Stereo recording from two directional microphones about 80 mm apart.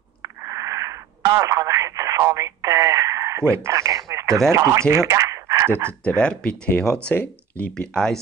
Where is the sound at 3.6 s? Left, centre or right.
Right.